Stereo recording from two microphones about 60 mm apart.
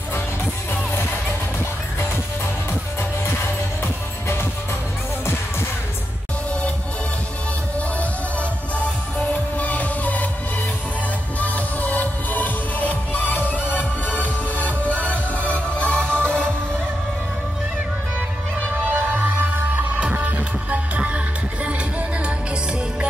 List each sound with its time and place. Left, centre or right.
3.8 s music: left
9.3 s music: left
11.3 s music: left
18.7 s music: right